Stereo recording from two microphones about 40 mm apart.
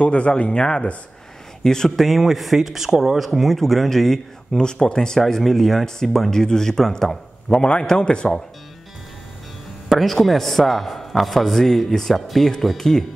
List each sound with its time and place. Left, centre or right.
0.0 s speech: left
1.6 s speech: centre
2.0 s speech: centre
3.3 s speech: centre
4.6 s speech: left
5.4 s a man's voice: centre; by 8.3 s left
9.8 s a sound: centre
10.2 s speech: centre